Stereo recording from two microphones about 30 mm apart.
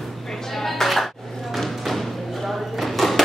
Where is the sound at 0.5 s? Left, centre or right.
Centre.